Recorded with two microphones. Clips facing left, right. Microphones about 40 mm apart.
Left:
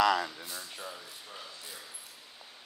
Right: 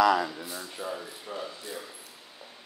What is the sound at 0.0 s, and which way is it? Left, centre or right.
Speech, right.